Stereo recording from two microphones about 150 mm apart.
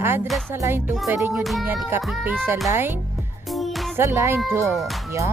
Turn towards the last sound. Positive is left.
turn(degrees=-15)  # may be behind; listen again after turning